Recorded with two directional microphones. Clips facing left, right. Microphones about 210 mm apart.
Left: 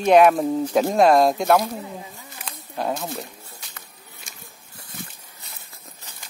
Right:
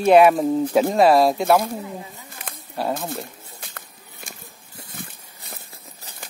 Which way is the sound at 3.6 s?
55° right (ahead or behind).